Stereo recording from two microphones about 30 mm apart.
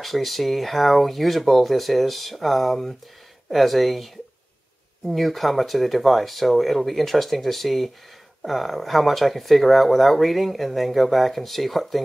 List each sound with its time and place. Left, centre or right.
0.0 s speech: centre